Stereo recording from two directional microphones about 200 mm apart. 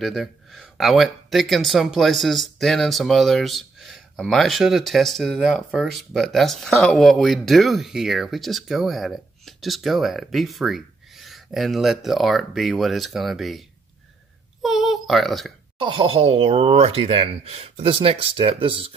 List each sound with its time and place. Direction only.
0.0 s a child's voice: centre (ahead or behind)
15.8 s speech: 25° right (ahead or behind)